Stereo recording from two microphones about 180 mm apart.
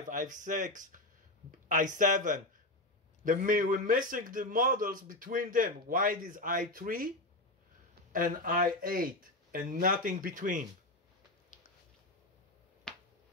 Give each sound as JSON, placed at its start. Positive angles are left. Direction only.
{"t": 0.1, "sound": "a man's voice", "side_deg": -45}
{"t": 12.9, "sound": "finger snapping", "side_deg": 5}